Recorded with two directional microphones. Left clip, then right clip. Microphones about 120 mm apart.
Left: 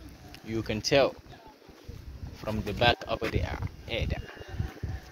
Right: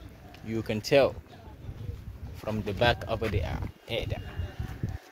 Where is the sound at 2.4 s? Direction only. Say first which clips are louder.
Even; 30° right (ahead or behind).